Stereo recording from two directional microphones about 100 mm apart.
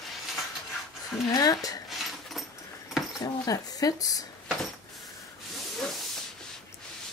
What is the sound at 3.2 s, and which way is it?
Speech, 40° left (ahead or behind).